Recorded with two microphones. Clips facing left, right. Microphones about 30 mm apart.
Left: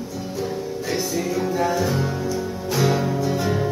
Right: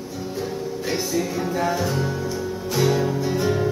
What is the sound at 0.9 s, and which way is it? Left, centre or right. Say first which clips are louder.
Music: left 1 dB; centre.